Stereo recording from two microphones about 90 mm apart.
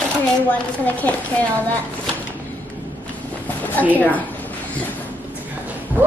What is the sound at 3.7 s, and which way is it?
Speech, 20° left (ahead or behind).